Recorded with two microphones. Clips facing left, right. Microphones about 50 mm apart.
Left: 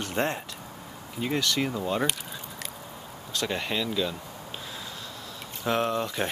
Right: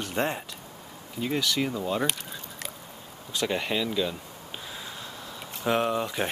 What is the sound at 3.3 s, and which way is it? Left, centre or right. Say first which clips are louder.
Speech: right 2 dB; centre.